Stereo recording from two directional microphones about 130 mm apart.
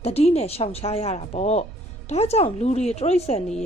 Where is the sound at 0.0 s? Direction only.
50° left (ahead or behind).